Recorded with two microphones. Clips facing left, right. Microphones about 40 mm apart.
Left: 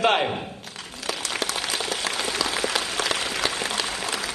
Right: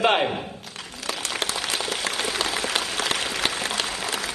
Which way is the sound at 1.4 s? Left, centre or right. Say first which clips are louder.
Right 1 dB; right.